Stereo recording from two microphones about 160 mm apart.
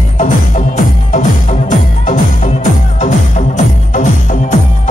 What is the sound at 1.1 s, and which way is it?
Music, 50° left (ahead or behind).